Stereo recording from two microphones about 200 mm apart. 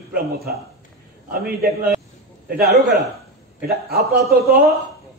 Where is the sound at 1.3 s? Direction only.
50° right (ahead or behind).